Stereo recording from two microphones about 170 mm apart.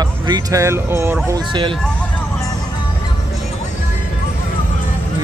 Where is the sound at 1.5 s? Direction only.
30° right (ahead or behind).